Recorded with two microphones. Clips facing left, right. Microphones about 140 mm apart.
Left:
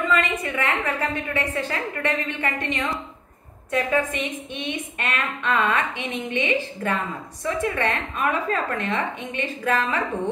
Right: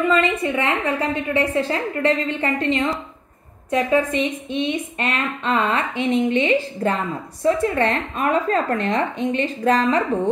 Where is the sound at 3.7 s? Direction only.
30° right (ahead or behind).